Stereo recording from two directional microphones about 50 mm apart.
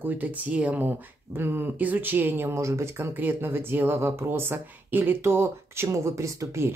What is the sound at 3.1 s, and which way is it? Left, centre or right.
Speech, right.